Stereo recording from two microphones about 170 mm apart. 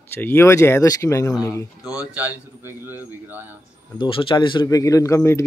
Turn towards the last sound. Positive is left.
turn(degrees=15)  # may be behind; listen again after turning